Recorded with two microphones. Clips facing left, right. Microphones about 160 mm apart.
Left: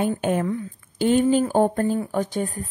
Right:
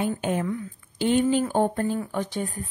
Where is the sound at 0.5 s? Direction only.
40° left (ahead or behind).